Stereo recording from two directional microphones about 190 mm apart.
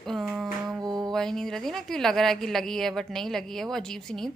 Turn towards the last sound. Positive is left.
turn(degrees=5)  # may be behind; listen again after turning